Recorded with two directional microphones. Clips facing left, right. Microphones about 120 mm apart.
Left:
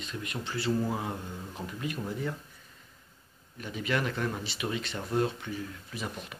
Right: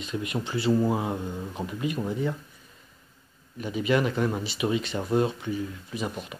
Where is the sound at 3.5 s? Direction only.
5° right (ahead or behind).